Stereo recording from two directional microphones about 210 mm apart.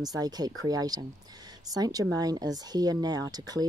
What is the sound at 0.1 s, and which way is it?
Speech, 20° right (ahead or behind).